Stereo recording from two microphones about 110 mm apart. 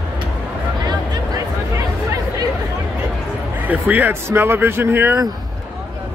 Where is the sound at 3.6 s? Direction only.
15° right (ahead or behind).